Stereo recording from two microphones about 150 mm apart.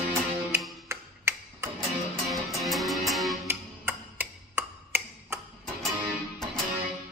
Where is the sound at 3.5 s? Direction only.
15° right (ahead or behind).